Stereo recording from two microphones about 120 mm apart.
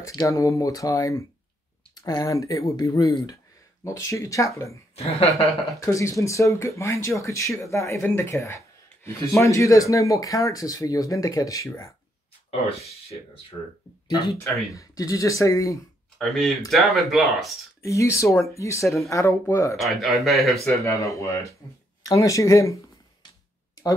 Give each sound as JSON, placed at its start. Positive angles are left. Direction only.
{"t": 0.0, "sound": "speech", "side_deg": 30}
{"t": 4.9, "sound": "a woman's voice", "side_deg": 60}
{"t": 5.8, "sound": "speech", "side_deg": 25}
{"t": 12.4, "sound": "speech", "side_deg": 55}
{"t": 14.0, "sound": "speech", "side_deg": 25}
{"t": 16.2, "sound": "speech", "side_deg": 0}
{"t": 17.8, "sound": "speech", "side_deg": 25}
{"t": 19.8, "sound": "speech", "side_deg": 0}
{"t": 20.8, "sound": "speech", "side_deg": 25}